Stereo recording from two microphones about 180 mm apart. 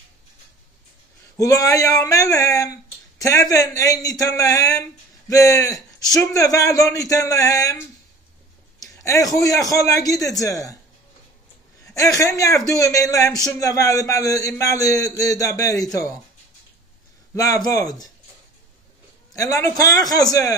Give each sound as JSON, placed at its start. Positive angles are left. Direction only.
{"t": 1.3, "sound": "speech", "side_deg": 20}
{"t": 12.2, "sound": "a man's voice", "side_deg": 20}
{"t": 17.3, "sound": "a man's voice", "side_deg": 20}
{"t": 19.3, "sound": "speech", "side_deg": 20}